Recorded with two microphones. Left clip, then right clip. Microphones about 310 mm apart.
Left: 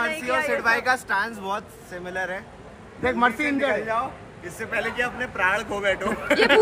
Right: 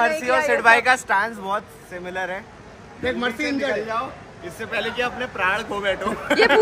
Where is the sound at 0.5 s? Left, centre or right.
Right.